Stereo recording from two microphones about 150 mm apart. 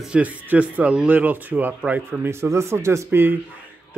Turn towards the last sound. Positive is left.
turn(degrees=-15)  # may be behind; listen again after turning